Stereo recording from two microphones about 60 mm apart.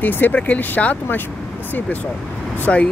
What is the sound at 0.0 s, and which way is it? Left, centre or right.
Speech, left.